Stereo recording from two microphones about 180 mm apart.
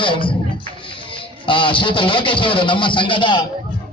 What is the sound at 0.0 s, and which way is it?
Music, 30° left (ahead or behind).